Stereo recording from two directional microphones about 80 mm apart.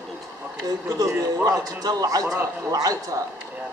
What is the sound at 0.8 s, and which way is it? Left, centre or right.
A man's voice, right.